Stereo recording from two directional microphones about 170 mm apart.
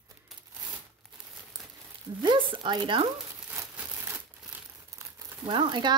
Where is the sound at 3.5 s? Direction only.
15° right (ahead or behind).